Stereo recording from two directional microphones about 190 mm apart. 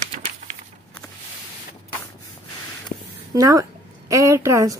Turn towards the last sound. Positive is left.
turn(degrees=-15)  # may be behind; listen again after turning